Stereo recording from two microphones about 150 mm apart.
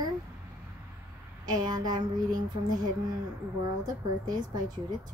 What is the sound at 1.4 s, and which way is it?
Speech, 30° right (ahead or behind).